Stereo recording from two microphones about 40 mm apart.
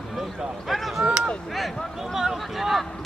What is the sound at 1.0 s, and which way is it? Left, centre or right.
Speech, right.